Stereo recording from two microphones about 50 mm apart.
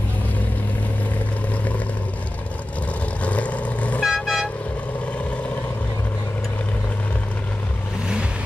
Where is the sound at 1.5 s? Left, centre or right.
Left.